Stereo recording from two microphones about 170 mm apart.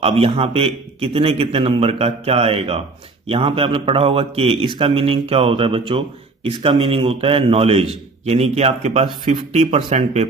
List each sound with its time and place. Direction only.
0.0 s speech: 35° right (ahead or behind)